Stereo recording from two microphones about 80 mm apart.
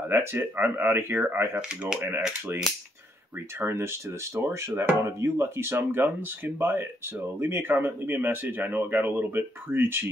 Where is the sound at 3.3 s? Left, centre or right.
Right.